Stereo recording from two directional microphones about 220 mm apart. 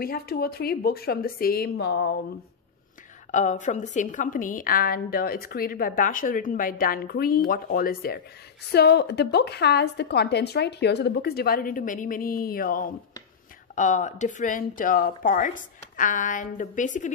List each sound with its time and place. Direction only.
0.0 s a woman's voice: 45° left (ahead or behind)
3.3 s a woman's voice: 35° left (ahead or behind)